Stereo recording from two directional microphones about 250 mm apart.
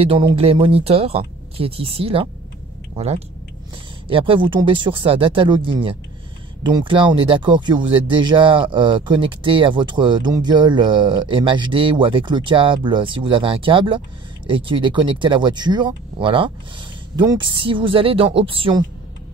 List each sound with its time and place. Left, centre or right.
0.0 s speech: centre
4.1 s speech: right